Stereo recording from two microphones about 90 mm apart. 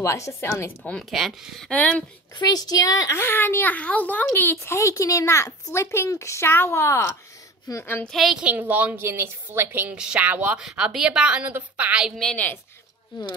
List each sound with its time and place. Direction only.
0.0 s speech: 30° left (ahead or behind)
1.1 s speech: centre (ahead or behind)
1.7 s speech: 15° left (ahead or behind)
2.3 s a woman's voice: 45° left (ahead or behind)
3.2 s a woman's voice: 25° left (ahead or behind)
7.8 s a woman's voice: 20° left (ahead or behind)
8.1 s speech: centre (ahead or behind)
8.4 s a woman's voice: 15° right (ahead or behind)
9.9 s a woman's voice: 10° right (ahead or behind)
10.6 s a woman's voice: 5° right (ahead or behind)